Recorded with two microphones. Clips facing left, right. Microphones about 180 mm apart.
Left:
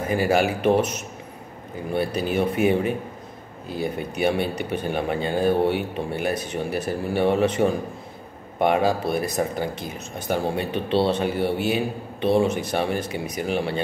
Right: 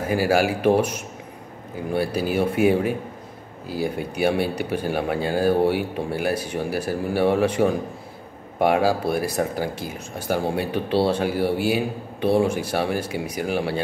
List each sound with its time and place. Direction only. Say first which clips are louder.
0.0 s speech: right 1 dB; 5° right (ahead or behind)